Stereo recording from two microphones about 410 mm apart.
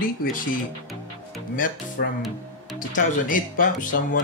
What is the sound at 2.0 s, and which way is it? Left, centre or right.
Speech, left.